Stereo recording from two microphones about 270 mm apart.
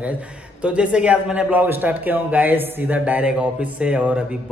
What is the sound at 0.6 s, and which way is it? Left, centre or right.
A man's voice, centre.